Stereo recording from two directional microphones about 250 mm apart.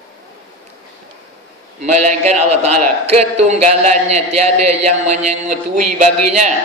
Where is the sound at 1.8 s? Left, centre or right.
Right.